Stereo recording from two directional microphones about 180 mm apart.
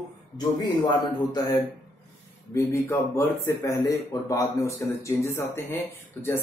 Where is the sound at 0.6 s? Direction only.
25° left (ahead or behind).